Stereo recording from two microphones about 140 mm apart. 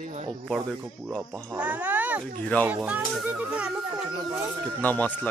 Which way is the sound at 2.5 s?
10° left (ahead or behind).